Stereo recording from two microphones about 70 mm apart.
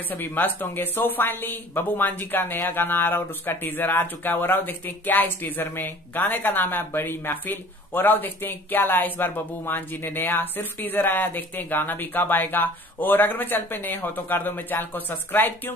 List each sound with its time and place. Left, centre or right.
0.1 s speech: left